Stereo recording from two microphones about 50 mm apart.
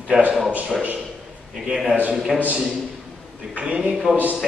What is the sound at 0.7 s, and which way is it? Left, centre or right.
Speech, centre.